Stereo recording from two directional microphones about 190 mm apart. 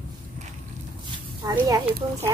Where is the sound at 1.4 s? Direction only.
15° right (ahead or behind).